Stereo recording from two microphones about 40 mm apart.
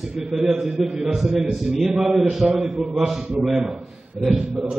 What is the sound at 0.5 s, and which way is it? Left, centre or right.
A man's voice, centre.